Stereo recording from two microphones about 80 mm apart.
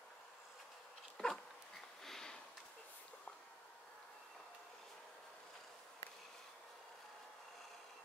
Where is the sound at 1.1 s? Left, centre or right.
Centre.